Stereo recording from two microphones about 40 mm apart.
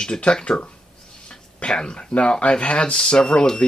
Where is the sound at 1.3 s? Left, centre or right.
Left.